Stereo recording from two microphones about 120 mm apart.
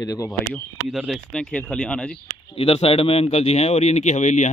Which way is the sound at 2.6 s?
55° left (ahead or behind).